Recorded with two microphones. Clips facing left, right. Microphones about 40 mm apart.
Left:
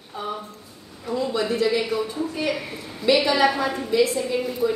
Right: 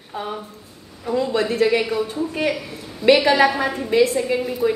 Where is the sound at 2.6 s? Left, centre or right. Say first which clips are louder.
Even; left.